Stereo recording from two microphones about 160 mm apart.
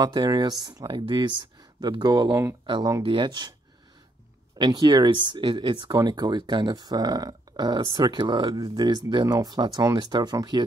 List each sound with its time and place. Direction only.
0.0 s speech: 25° right (ahead or behind)
4.6 s speech: 25° right (ahead or behind)